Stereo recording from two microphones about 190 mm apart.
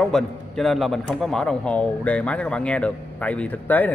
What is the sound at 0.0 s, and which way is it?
A man's voice, centre (ahead or behind).